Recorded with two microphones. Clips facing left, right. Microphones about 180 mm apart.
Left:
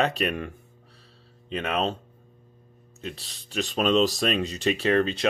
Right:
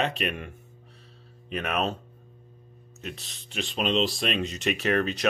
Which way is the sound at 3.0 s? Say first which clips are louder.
Left 2 dB; 35° left (ahead or behind).